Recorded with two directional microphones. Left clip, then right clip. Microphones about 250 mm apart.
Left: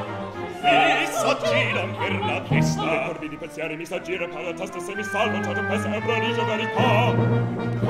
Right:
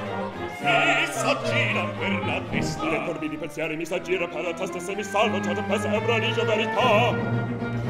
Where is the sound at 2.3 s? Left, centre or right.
Centre.